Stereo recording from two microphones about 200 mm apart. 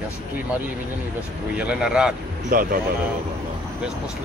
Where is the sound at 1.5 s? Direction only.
5° right (ahead or behind).